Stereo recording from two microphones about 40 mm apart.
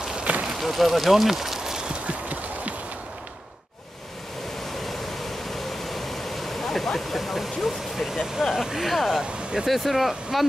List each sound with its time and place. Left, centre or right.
0.2 s a sound: right
0.5 s a sound: centre
2.0 s clip-clop: right
5.9 s speech: centre
9.2 s speech: centre
9.7 s speech: centre